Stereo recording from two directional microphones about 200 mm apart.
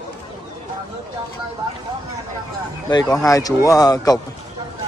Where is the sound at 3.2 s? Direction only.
15° left (ahead or behind).